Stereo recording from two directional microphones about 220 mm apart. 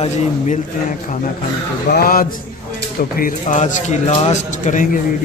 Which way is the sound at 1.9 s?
40° left (ahead or behind).